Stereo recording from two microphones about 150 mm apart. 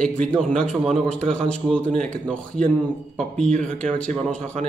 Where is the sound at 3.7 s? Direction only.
5° left (ahead or behind).